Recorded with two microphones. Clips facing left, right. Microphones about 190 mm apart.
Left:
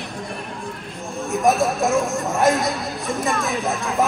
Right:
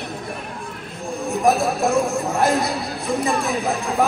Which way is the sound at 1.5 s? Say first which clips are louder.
Even; centre (ahead or behind).